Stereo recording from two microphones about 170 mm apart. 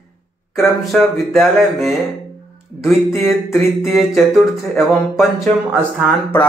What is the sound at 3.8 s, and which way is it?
Speech, centre (ahead or behind).